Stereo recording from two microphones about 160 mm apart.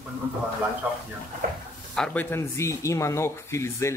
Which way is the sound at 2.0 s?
10° left (ahead or behind).